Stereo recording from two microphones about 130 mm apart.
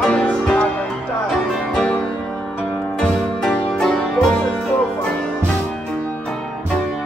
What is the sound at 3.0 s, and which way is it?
Music, 5° left (ahead or behind).